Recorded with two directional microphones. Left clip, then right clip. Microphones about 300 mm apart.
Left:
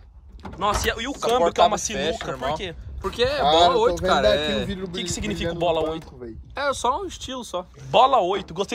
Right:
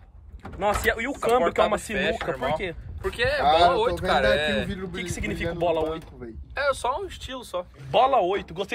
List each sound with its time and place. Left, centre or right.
0.6 s speech: centre
6.8 s speech: centre
7.9 s speech: centre